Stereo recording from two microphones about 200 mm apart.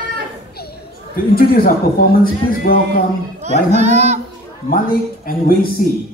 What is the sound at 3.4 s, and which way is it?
Speech, 35° right (ahead or behind).